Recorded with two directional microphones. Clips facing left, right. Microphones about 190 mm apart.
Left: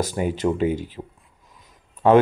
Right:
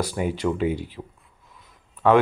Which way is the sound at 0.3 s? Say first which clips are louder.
Left 3 dB; 20° left (ahead or behind).